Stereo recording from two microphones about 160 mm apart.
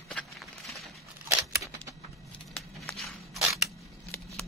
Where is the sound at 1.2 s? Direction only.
20° right (ahead or behind).